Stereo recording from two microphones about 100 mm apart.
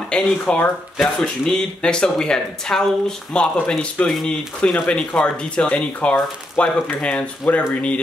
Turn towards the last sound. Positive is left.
turn(degrees=10)  # may be behind; listen again after turning